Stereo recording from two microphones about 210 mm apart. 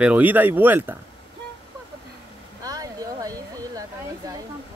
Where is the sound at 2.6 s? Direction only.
15° right (ahead or behind).